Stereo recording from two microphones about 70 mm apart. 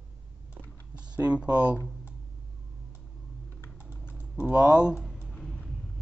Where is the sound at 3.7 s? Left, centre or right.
Centre.